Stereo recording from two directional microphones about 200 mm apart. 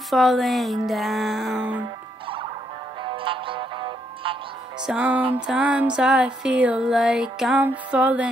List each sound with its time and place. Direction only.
0.1 s music: centre (ahead or behind)
3.0 s music: 25° right (ahead or behind)
4.8 s music: 5° right (ahead or behind)